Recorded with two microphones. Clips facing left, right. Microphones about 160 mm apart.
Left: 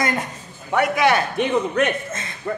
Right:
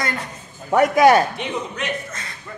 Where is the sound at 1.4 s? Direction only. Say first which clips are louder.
Left 8 dB; 50° left (ahead or behind).